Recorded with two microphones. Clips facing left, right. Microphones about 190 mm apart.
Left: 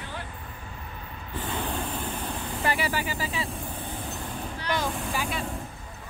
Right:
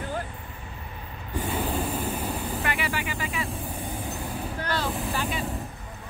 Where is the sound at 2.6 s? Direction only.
35° left (ahead or behind).